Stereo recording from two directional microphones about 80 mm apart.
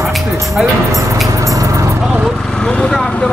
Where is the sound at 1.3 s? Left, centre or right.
Right.